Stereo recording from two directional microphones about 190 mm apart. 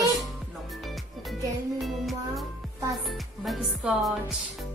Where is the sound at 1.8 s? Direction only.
Centre (ahead or behind).